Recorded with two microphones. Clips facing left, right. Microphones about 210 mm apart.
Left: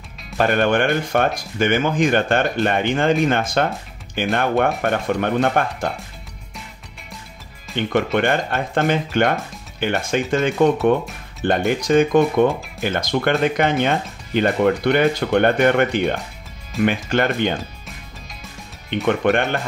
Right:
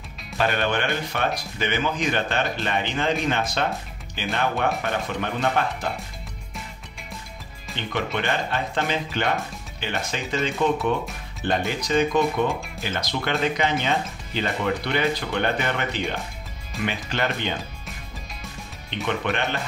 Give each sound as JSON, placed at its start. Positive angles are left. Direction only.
{"t": 0.4, "sound": "speech", "side_deg": 50}
{"t": 7.7, "sound": "speech", "side_deg": 50}
{"t": 19.0, "sound": "speech", "side_deg": 50}